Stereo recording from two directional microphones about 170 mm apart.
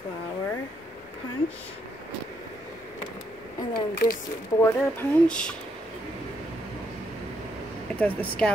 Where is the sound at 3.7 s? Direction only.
60° left (ahead or behind).